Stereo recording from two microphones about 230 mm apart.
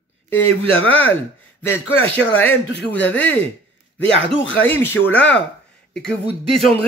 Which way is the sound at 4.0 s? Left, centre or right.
Left.